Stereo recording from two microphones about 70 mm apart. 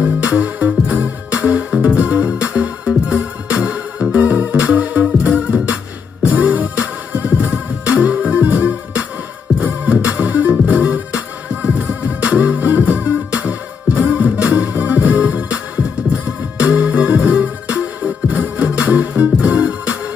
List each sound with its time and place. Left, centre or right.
0.0 s music: right